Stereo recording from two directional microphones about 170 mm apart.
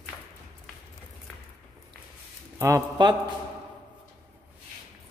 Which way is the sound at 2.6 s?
20° right (ahead or behind).